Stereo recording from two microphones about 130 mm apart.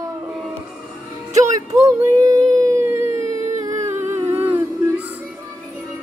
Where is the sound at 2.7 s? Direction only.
20° right (ahead or behind).